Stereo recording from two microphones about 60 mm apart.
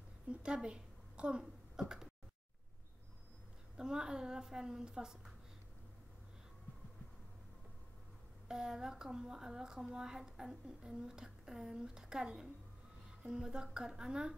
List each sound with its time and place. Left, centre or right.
0.3 s a woman's voice: centre
3.7 s a woman's voice: centre
8.5 s a woman's voice: centre